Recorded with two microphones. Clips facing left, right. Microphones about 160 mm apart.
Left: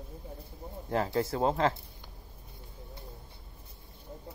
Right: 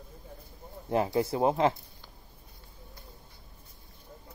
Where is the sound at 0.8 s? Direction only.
15° right (ahead or behind).